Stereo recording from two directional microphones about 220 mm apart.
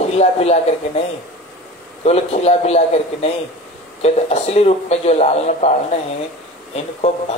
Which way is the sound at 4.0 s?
30° left (ahead or behind).